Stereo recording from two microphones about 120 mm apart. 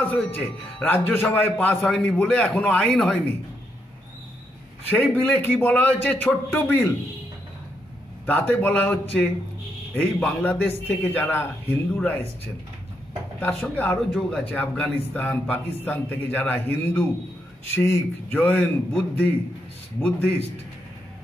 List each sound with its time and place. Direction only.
0.0 s a man's voice: 15° left (ahead or behind)
4.8 s a man's voice: 15° left (ahead or behind)
8.3 s a man's voice: 15° left (ahead or behind)
13.4 s a man's voice: 15° left (ahead or behind)